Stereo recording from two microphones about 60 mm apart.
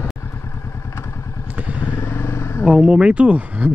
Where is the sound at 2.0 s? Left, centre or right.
Left.